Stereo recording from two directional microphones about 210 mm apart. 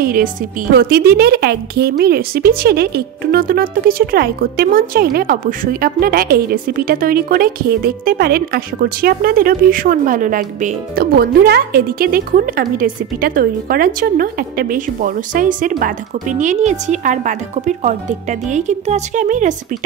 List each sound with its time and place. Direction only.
0.0 s speech: 45° right (ahead or behind)